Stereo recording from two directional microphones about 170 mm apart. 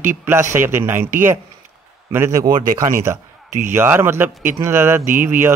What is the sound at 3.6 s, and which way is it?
Speech, 15° right (ahead or behind).